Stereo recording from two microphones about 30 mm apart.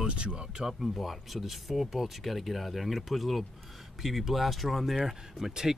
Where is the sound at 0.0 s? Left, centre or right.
Right.